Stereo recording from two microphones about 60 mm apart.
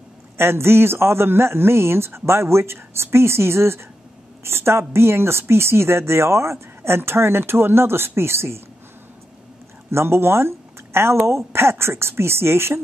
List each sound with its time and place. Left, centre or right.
0.4 s a woman's voice: right
9.8 s a woman's voice: right